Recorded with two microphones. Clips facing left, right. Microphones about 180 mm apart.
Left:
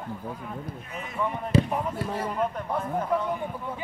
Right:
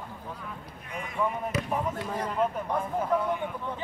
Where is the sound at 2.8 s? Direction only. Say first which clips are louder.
Left 1 dB; 5° right (ahead or behind).